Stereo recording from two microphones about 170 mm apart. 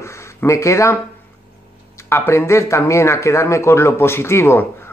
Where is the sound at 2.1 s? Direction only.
15° left (ahead or behind).